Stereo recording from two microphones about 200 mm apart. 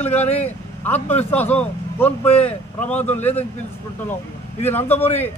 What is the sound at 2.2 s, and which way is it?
Speech, 30° left (ahead or behind).